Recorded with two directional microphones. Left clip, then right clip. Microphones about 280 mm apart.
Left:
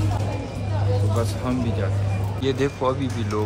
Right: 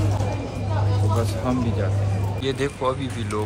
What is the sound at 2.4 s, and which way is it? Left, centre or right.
Speech, centre.